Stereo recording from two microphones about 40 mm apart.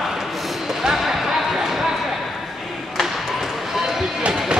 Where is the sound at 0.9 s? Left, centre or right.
Centre.